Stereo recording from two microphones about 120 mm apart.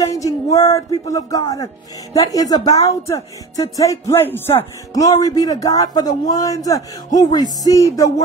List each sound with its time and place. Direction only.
0.1 s speech: 25° left (ahead or behind)
7.2 s music: 30° left (ahead or behind)
7.6 s speech: 30° left (ahead or behind)